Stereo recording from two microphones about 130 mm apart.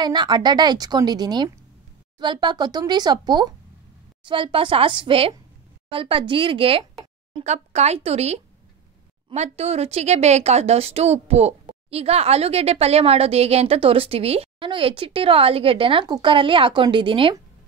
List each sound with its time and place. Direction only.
0.0 s a woman's voice: 35° right (ahead or behind)
7.4 s a woman's voice: 60° right (ahead or behind); by 17.4 s 40° right (ahead or behind)